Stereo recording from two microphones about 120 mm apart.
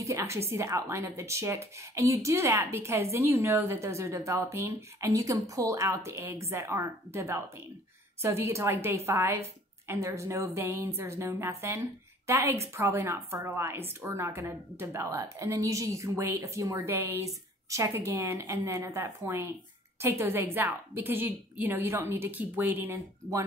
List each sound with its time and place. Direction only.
0.0 s a woman's voice: 25° right (ahead or behind)